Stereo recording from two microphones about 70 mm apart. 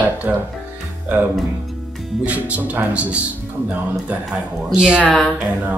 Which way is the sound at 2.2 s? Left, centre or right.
Right.